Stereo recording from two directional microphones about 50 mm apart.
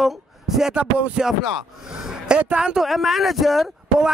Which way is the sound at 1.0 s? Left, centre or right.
Right.